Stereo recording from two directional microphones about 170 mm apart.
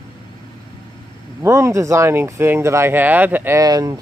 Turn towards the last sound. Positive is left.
turn(degrees=-20)  # may be behind; listen again after turning